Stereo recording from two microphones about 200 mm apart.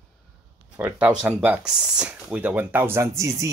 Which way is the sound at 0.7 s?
10° right (ahead or behind).